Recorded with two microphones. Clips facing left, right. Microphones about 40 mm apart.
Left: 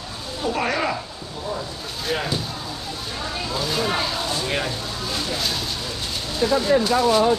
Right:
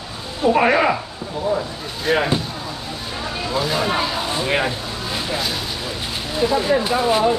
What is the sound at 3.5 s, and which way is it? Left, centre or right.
Speech, centre.